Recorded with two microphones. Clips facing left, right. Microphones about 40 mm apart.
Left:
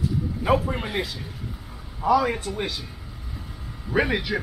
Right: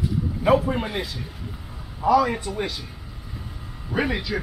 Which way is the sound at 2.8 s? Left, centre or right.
Centre.